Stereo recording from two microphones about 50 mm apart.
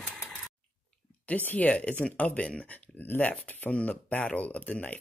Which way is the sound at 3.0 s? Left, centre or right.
Left.